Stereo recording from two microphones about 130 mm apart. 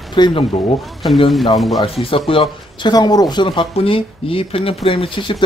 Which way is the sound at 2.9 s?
30° left (ahead or behind).